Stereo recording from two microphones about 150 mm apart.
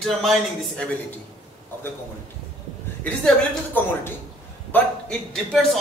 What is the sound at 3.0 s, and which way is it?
A man's voice, 10° left (ahead or behind).